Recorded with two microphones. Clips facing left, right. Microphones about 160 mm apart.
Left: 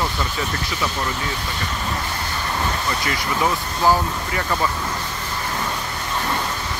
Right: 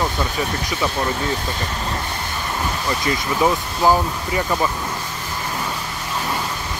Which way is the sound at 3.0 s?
25° right (ahead or behind).